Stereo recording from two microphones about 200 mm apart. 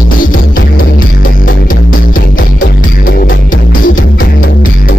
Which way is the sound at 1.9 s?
45° left (ahead or behind).